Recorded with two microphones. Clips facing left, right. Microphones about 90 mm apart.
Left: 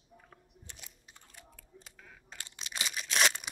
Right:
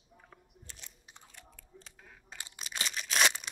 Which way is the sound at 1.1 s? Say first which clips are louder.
Right 2 dB; 15° right (ahead or behind).